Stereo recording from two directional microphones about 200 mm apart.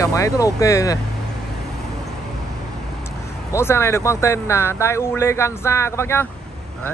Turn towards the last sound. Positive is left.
turn(degrees=10)  # may be behind; listen again after turning